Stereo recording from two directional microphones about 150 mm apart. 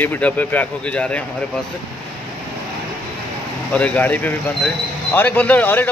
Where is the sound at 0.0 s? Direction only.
10° left (ahead or behind).